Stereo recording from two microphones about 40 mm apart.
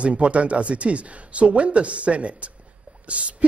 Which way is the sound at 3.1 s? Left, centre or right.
Right.